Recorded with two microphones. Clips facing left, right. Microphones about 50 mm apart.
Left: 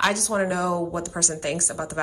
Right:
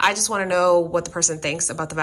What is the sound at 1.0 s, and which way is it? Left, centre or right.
A woman's voice, right.